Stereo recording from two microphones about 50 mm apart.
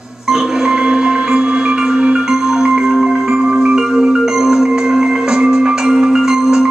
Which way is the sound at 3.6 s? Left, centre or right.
Centre.